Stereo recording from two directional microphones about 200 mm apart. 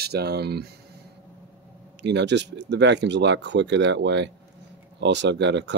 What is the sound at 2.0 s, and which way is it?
Speech, 60° right (ahead or behind).